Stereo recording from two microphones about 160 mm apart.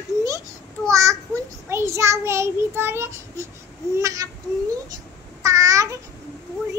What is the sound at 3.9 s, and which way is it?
Child singing, 20° right (ahead or behind).